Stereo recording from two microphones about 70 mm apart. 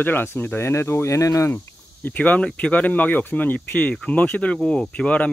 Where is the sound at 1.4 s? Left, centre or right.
Left.